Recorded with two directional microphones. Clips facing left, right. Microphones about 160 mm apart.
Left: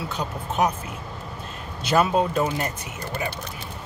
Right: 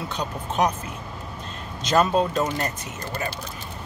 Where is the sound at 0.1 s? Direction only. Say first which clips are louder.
Even; 5° left (ahead or behind).